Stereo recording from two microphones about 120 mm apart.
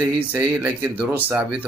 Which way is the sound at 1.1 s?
15° right (ahead or behind).